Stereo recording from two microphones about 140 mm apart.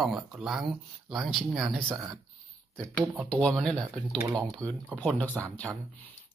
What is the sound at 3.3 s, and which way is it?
Speech, 10° left (ahead or behind).